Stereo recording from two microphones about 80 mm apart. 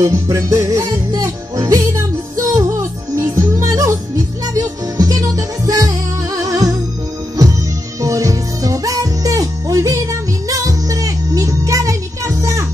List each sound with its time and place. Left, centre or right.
0.0 s music: right
8.0 s music: right